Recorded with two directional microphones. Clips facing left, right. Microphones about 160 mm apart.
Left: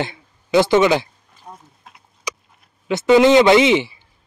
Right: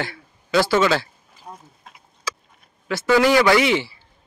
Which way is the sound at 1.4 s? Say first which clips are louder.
Even; centre (ahead or behind).